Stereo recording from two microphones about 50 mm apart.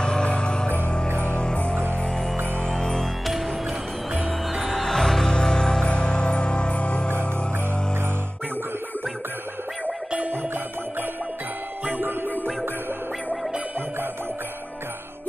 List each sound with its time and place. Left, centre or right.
0.0 s music: centre
2.7 s music: centre
4.6 s music: centre; by 7.1 s left